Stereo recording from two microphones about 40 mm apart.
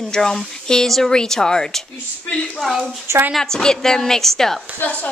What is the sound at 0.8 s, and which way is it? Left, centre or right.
Speech, centre.